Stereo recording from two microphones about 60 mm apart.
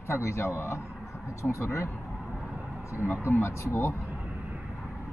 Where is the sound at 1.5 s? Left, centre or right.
Left.